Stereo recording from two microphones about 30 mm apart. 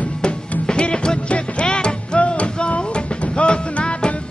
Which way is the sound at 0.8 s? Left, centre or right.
Left.